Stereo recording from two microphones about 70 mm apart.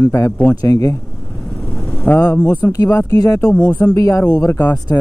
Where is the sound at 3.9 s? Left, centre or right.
Left.